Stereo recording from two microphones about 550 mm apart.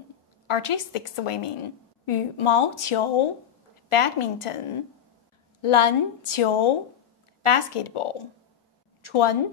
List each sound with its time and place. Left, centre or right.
0.5 s a woman's voice: left